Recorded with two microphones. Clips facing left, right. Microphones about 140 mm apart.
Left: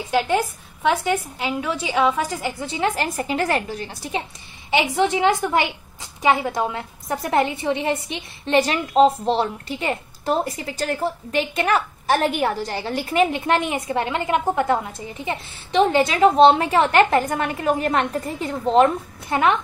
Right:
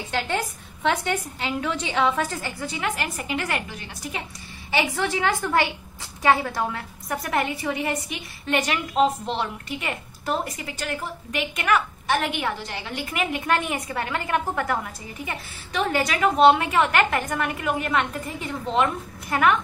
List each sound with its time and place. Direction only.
0.1 s a woman's voice: 10° left (ahead or behind)
2.6 s a woman's voice: 25° left (ahead or behind)
4.6 s a woman's voice: 20° left (ahead or behind); by 18.9 s 40° left (ahead or behind)
19.2 s a woman's voice: 25° left (ahead or behind)